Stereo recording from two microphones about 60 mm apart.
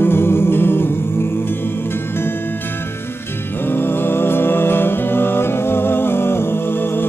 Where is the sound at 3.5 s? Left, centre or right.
Left.